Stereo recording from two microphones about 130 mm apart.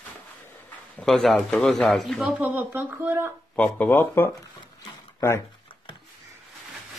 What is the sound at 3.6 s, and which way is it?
Speech, 10° left (ahead or behind).